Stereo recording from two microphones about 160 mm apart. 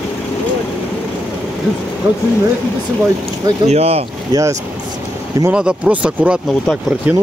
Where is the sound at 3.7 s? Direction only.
40° right (ahead or behind).